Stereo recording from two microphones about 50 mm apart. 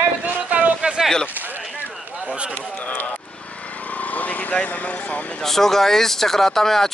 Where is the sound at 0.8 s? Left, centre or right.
Centre.